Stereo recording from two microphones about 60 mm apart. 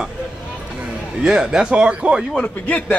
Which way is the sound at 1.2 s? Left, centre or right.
Centre.